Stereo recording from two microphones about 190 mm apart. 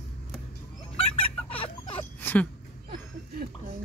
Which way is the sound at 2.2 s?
10° left (ahead or behind).